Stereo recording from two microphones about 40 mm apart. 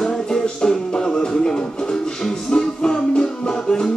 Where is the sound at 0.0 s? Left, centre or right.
Centre.